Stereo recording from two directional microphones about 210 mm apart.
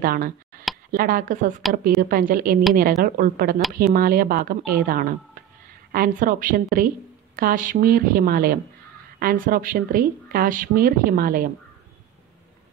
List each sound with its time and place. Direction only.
0.0 s a woman's voice: 45° right (ahead or behind)